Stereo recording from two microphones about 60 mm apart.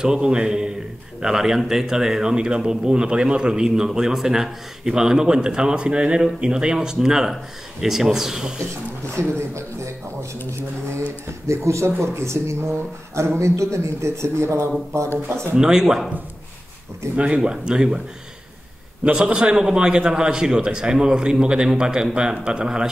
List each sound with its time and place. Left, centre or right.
0.0 s speech: centre
9.1 s speech: right
11.4 s a man's voice: right
15.5 s speech: centre
17.1 s speech: right
17.4 s speech: centre
19.1 s speech: centre